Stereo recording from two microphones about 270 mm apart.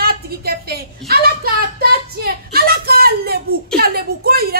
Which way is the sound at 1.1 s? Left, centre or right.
Right.